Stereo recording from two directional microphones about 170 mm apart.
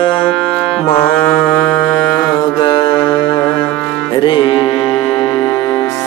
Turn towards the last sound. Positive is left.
turn(degrees=30)  # may be behind; listen again after turning